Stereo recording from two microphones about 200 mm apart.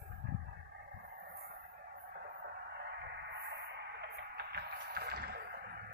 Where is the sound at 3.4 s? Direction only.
55° right (ahead or behind).